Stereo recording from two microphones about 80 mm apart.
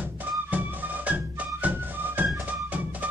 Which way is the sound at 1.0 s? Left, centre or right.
Centre.